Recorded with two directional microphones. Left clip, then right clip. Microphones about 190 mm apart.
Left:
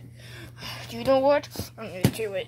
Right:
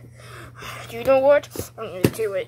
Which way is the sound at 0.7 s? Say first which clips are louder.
Right 2 dB; 5° left (ahead or behind).